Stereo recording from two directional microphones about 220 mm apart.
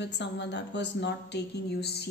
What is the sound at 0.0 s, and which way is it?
A woman's voice, 55° left (ahead or behind).